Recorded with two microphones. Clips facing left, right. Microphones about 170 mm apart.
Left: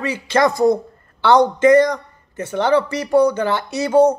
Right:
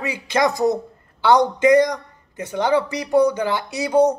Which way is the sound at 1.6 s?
15° right (ahead or behind).